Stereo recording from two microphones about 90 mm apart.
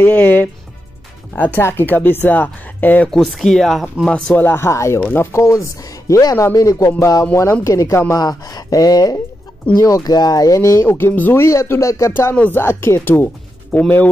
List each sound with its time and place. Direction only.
0.0 s speech: 20° left (ahead or behind)
3.1 s speech: centre (ahead or behind); by 8.2 s 35° left (ahead or behind)
8.2 s speech: 50° left (ahead or behind)
12.4 s speech: 25° left (ahead or behind)